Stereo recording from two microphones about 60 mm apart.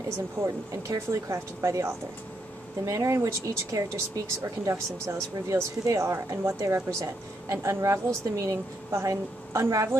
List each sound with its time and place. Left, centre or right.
0.4 s speech: right